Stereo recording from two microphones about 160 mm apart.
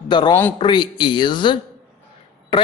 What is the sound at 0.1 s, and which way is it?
A woman's voice, 30° left (ahead or behind).